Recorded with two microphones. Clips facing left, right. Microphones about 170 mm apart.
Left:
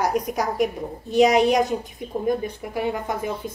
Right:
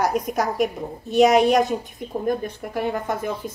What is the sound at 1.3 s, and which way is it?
Speech, 15° left (ahead or behind).